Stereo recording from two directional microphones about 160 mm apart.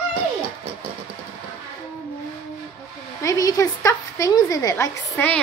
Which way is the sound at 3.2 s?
20° left (ahead or behind).